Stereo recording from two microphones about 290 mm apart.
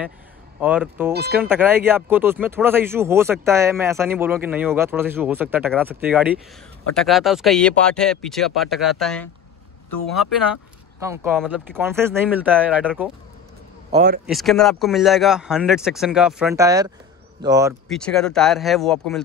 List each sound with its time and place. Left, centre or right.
0.6 s speech: centre
1.1 s speech: right
1.4 s speech: centre
11.3 s speech: centre
13.9 s speech: right
14.2 s speech: centre
17.8 s speech: centre